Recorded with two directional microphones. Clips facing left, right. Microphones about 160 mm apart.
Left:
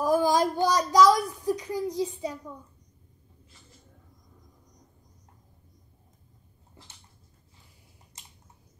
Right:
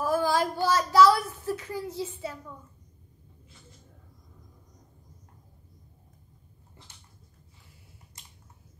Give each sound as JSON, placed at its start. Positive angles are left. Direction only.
{"t": 0.0, "sound": "child singing", "side_deg": 15}